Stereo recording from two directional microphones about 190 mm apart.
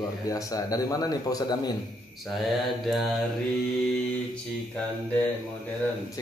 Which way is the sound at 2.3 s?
Centre (ahead or behind).